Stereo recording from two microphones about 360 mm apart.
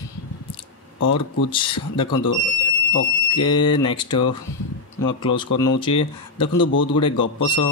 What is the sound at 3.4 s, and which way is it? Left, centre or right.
Speech, centre.